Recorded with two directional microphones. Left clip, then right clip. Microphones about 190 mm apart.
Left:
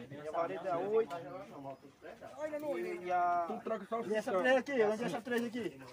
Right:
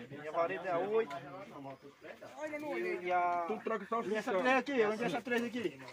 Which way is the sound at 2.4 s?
10° left (ahead or behind).